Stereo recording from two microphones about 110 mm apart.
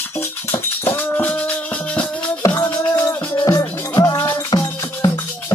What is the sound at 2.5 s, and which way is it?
Music, 25° left (ahead or behind).